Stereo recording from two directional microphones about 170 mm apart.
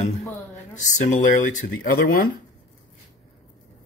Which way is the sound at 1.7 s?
60° left (ahead or behind).